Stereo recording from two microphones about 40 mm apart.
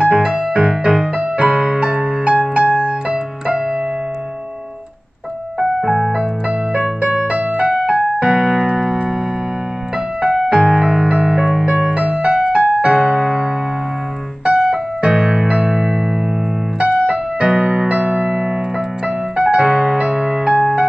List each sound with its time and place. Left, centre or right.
0.0 s music: right
5.8 s music: centre
6.7 s keyboard: right
7.3 s music: right
8.2 s keyboard: right
10.2 s music: right
14.4 s keyboard: right
15.8 s music: centre
16.8 s keyboard: right
18.2 s keyboard: centre
19.0 s music: right